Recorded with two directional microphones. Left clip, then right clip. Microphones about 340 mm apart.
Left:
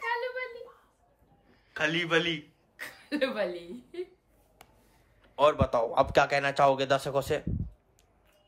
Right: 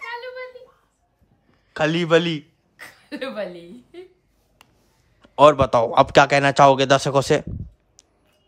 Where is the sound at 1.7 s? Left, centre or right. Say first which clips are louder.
Right 9 dB; centre.